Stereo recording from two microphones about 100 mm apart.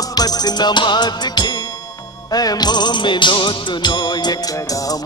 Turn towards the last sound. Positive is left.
turn(degrees=45)  # may be behind; listen again after turning